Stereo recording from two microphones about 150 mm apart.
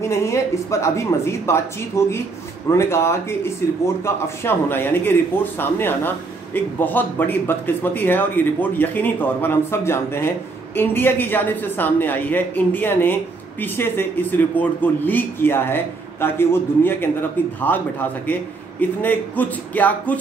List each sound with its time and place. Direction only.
0.1 s speech: 20° left (ahead or behind)